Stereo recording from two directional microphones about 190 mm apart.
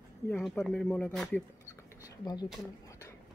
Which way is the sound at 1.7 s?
15° left (ahead or behind).